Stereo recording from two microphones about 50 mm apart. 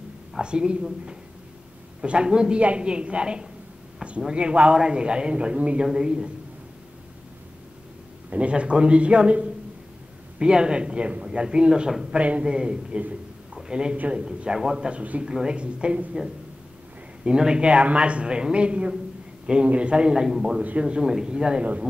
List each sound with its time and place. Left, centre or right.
0.4 s a man's voice: centre
2.0 s a man's voice: right
8.3 s a man's voice: right
12.2 s a man's voice: right
13.9 s a man's voice: right
14.2 s speech: centre
15.0 s a man's voice: right
17.2 s a man's voice: centre